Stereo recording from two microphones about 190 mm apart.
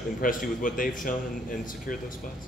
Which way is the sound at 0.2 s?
45° left (ahead or behind).